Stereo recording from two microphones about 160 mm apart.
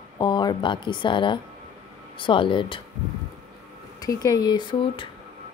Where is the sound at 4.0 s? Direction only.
20° left (ahead or behind).